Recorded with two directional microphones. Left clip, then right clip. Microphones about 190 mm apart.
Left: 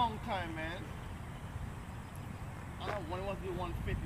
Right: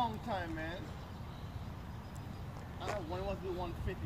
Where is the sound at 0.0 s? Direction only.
50° right (ahead or behind).